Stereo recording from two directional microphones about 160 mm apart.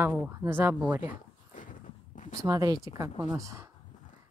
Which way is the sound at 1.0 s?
55° left (ahead or behind).